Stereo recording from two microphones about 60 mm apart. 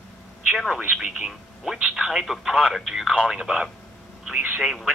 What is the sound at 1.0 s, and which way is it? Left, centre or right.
Speech, centre.